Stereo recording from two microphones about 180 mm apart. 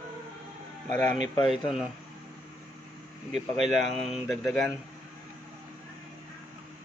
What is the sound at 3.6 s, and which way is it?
Speech, 40° right (ahead or behind).